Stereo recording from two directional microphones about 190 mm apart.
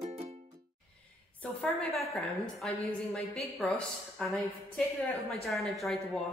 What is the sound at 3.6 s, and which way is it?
Speech, centre (ahead or behind).